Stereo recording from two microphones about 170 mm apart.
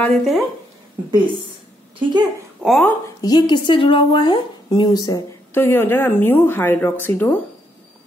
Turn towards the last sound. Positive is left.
turn(degrees=10)  # may be behind; listen again after turning